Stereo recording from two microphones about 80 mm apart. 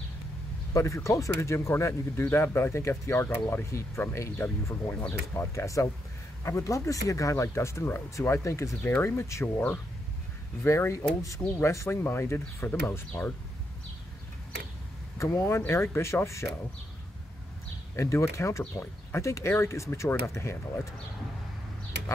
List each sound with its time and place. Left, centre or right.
0.7 s speech: left
10.6 s speech: left
15.1 s speech: left
17.9 s speech: left